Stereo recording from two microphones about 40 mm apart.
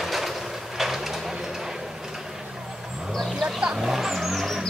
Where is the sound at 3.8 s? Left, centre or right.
Centre.